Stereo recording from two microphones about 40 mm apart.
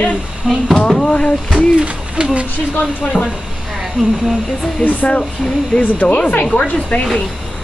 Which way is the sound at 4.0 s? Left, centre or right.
Centre.